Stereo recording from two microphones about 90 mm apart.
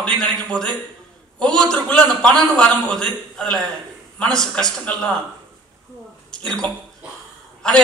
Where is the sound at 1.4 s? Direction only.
10° left (ahead or behind).